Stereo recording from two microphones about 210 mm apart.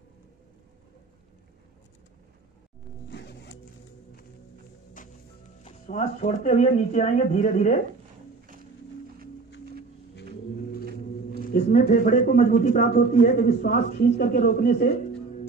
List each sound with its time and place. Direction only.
3.1 s zipper: 55° left (ahead or behind)
5.0 s music: 40° left (ahead or behind)
5.6 s speech: 30° left (ahead or behind)
11.1 s speech: 40° left (ahead or behind)